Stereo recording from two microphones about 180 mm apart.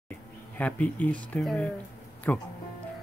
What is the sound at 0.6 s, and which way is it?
Speech, 10° left (ahead or behind).